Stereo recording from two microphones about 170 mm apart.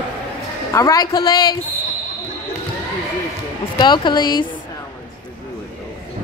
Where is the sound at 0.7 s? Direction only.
20° left (ahead or behind).